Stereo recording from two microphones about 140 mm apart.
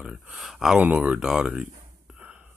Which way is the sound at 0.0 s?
5° right (ahead or behind).